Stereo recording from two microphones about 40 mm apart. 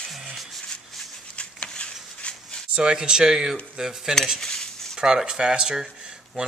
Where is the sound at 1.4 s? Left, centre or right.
Left.